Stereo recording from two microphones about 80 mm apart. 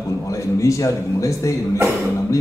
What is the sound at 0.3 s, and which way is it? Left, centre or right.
A man's voice, left.